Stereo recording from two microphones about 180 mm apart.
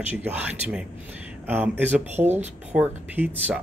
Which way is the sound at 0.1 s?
10° right (ahead or behind).